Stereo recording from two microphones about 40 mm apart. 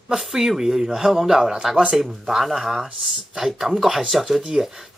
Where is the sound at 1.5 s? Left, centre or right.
Right.